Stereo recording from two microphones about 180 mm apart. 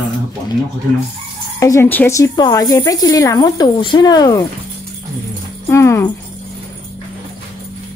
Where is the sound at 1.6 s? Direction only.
15° left (ahead or behind).